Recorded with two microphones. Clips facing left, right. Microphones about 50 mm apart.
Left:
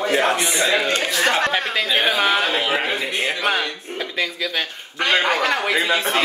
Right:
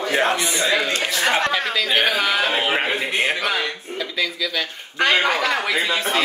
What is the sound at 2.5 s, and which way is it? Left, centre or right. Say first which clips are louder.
Speech: even; right.